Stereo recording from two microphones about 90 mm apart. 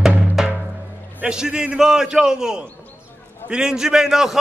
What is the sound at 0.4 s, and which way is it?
Music, 5° right (ahead or behind).